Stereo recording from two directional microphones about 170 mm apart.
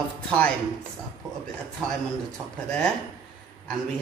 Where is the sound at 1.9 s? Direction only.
5° left (ahead or behind).